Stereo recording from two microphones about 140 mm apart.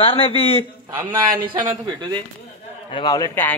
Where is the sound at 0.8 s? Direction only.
20° right (ahead or behind).